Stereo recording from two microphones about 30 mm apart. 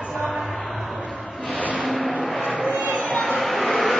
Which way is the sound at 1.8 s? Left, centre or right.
Centre.